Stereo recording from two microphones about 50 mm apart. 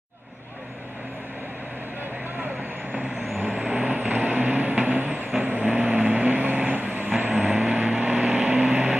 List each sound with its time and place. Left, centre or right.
2.9 s vehicle: right